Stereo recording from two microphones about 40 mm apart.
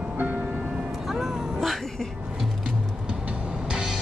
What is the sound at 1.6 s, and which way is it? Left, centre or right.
Speech, centre.